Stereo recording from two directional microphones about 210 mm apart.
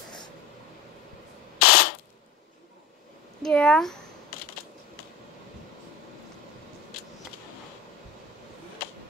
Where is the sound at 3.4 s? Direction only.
5° left (ahead or behind).